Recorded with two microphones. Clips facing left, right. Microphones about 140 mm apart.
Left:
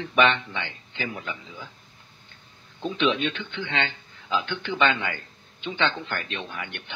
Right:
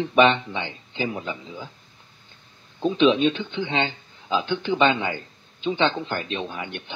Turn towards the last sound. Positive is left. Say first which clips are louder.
# right 4 dB
turn(degrees=-30)  # may be behind; listen again after turning